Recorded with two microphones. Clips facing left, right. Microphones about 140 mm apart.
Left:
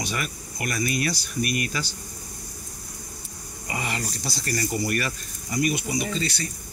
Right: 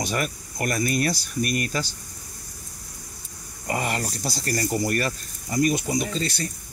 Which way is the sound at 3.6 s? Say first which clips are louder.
Right 4 dB; 50° right (ahead or behind).